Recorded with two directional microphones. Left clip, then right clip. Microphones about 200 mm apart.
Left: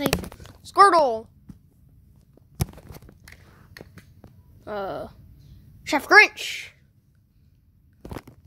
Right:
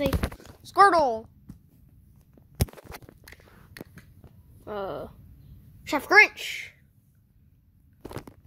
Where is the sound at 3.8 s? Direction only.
20° right (ahead or behind).